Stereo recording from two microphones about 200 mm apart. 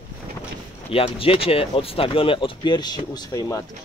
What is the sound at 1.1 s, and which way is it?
Speech, 30° left (ahead or behind).